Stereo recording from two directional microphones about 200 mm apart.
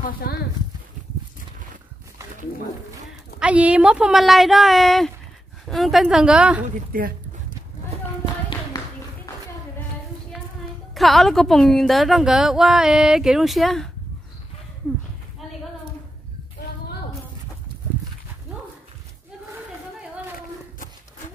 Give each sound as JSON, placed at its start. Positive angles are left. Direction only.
{"t": 0.0, "sound": "speech", "side_deg": 50}
{"t": 3.3, "sound": "a woman's voice", "side_deg": -5}
{"t": 6.9, "sound": "speech", "side_deg": -45}
{"t": 11.0, "sound": "a woman's voice", "side_deg": 0}